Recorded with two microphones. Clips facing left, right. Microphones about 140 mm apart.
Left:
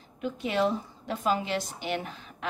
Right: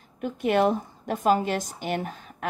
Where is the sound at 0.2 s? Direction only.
50° right (ahead or behind).